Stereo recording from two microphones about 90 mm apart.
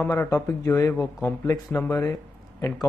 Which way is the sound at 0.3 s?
35° left (ahead or behind).